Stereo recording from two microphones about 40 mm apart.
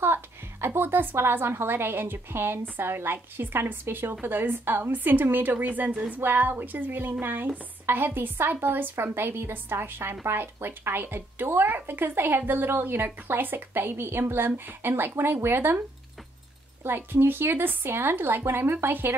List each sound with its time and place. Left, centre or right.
0.0 s a sound: right
0.7 s speech: right
5.7 s a woman's voice: right
7.8 s speech: right
16.8 s speech: right